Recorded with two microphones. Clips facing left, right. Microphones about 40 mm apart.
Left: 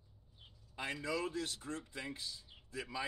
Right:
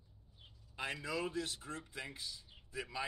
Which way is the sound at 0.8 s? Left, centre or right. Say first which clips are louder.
Left 1 dB; centre.